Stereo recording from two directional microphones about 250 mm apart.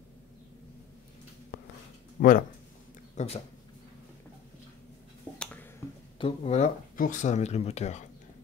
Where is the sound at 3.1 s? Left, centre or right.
Left.